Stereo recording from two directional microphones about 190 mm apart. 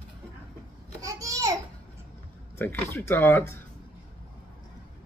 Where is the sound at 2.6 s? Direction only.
10° left (ahead or behind).